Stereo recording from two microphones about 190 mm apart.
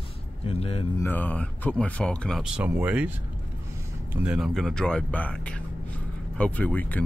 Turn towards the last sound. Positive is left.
turn(degrees=10)  # may be behind; listen again after turning